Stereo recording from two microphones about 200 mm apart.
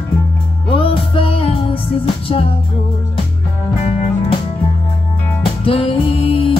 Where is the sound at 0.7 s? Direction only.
25° left (ahead or behind).